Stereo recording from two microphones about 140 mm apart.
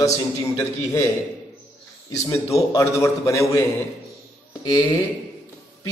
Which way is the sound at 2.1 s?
20° left (ahead or behind).